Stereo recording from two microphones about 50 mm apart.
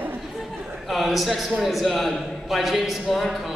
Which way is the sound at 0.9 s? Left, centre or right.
Centre.